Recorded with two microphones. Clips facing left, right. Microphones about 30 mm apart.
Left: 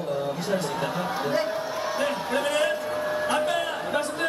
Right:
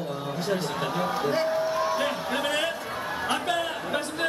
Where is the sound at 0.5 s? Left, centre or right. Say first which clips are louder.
Even; centre.